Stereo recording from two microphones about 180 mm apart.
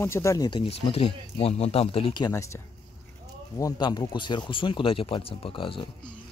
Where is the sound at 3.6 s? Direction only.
20° left (ahead or behind).